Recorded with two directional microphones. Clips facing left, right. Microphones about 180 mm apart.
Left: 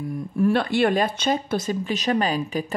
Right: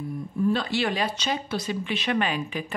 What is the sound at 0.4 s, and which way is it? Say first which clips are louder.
Speech: left 5 dB; 65° left (ahead or behind).